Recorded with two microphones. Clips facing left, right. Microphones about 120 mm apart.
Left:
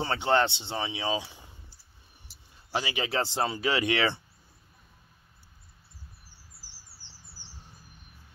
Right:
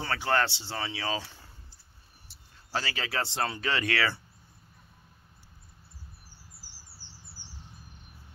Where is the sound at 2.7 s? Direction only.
15° left (ahead or behind).